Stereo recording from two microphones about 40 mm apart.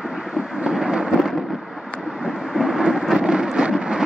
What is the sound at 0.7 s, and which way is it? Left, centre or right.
Vehicle, centre.